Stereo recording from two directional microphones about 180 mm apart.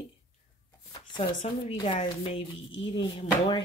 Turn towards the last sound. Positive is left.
turn(degrees=25)  # may be behind; listen again after turning